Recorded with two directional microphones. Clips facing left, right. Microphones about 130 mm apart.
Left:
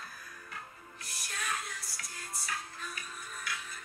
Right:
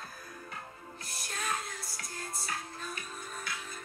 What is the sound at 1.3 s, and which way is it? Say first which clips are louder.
Music: right 2 dB; 30° right (ahead or behind).